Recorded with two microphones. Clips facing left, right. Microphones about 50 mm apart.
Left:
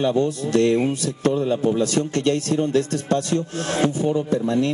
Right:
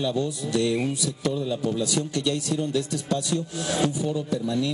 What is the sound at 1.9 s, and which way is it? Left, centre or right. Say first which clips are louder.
Speech: left 5 dB; left.